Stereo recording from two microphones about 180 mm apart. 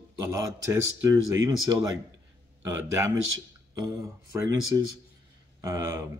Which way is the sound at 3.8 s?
15° right (ahead or behind).